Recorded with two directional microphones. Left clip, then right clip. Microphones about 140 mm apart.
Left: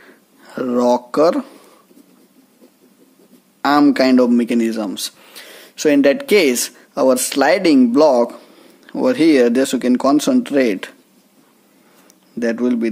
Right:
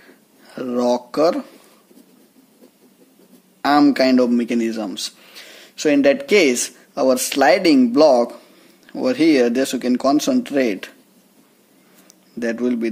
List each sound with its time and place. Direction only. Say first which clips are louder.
0.0 s a sound: left 3 dB; 30° left (ahead or behind)
3.6 s speech: left 1 dB; 30° left (ahead or behind)
12.4 s speech: left 3 dB; 25° left (ahead or behind)